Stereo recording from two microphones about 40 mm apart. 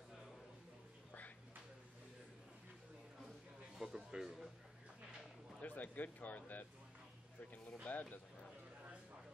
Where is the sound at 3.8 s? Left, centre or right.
Centre.